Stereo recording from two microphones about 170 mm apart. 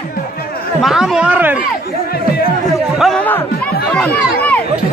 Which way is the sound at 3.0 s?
5° left (ahead or behind).